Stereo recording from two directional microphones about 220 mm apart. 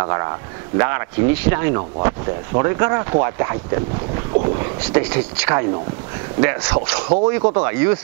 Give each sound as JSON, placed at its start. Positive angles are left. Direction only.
{"t": 0.0, "sound": "speech", "side_deg": -20}
{"t": 4.6, "sound": "speech", "side_deg": -20}
{"t": 7.4, "sound": "speech", "side_deg": -20}